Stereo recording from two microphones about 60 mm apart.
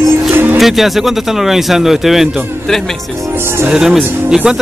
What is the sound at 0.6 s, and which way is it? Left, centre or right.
Speech, centre.